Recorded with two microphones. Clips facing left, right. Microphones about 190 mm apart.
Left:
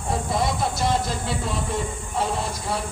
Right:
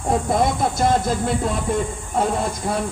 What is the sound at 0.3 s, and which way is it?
Speech, 50° right (ahead or behind).